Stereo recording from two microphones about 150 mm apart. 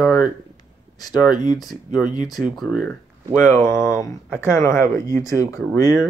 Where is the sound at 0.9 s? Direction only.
25° left (ahead or behind).